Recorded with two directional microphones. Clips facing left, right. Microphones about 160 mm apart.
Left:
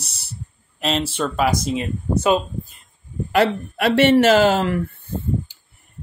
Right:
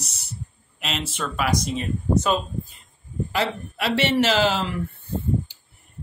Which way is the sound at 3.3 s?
55° left (ahead or behind).